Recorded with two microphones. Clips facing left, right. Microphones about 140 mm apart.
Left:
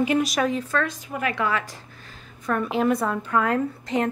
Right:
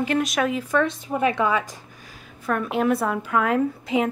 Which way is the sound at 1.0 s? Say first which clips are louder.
Right 4 dB; 30° right (ahead or behind).